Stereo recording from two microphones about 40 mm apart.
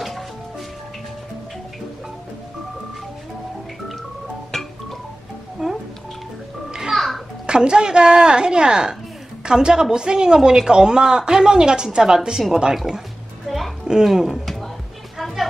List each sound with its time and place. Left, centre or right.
5.6 s music: centre
7.4 s a woman's voice: right
13.5 s music: centre
13.8 s speech: centre
14.4 s a sound: centre
15.1 s music: centre